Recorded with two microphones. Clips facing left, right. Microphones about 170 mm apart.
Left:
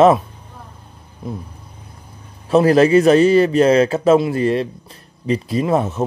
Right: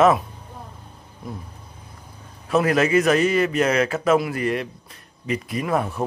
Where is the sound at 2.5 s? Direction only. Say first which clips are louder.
Left 7 dB; 30° left (ahead or behind).